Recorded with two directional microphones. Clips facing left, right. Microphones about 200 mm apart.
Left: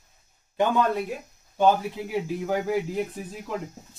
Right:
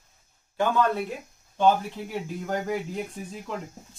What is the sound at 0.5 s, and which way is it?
Speech, 20° left (ahead or behind).